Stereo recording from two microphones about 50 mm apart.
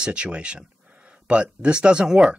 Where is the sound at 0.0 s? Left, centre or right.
Right.